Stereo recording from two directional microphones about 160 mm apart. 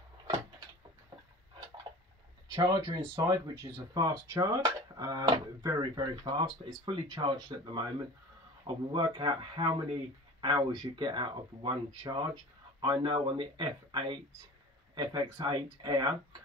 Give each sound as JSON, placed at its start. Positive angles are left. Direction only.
{"t": 2.4, "sound": "speech", "side_deg": -25}